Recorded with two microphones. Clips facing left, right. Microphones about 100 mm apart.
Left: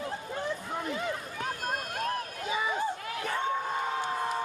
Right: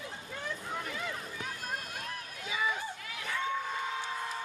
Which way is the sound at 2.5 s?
30° left (ahead or behind).